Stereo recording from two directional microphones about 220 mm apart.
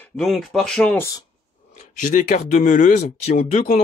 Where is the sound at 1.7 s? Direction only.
35° left (ahead or behind).